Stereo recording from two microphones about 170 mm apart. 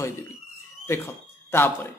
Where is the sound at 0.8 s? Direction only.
15° left (ahead or behind).